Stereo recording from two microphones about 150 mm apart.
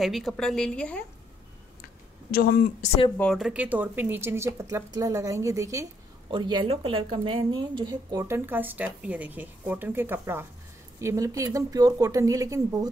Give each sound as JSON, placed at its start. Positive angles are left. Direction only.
{"t": 0.0, "sound": "a woman's voice", "side_deg": 0}
{"t": 2.3, "sound": "speech", "side_deg": 80}
{"t": 3.2, "sound": "speech", "side_deg": 0}
{"t": 6.3, "sound": "speech", "side_deg": -30}